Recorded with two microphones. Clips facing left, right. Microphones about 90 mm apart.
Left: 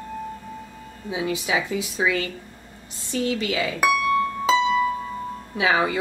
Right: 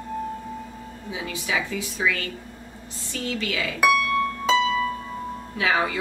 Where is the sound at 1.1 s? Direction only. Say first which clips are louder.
Left 5 dB; 20° left (ahead or behind).